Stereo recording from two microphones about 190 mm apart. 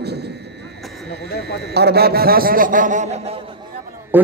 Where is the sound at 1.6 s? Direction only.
60° right (ahead or behind); by 3.2 s 40° right (ahead or behind).